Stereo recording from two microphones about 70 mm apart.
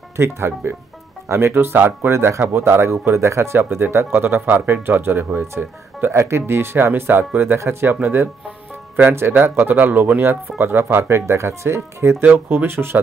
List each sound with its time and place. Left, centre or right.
0.2 s speech: right